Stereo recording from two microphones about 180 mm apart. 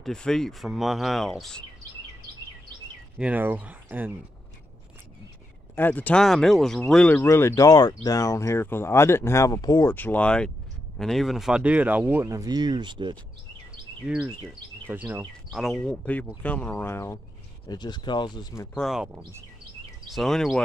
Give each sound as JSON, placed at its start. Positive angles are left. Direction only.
{"t": 0.0, "sound": "speech", "side_deg": 5}
{"t": 3.2, "sound": "speech", "side_deg": -10}
{"t": 5.8, "sound": "speech", "side_deg": 10}
{"t": 9.9, "sound": "speech", "side_deg": 10}
{"t": 14.0, "sound": "speech", "side_deg": -5}
{"t": 18.8, "sound": "speech", "side_deg": 0}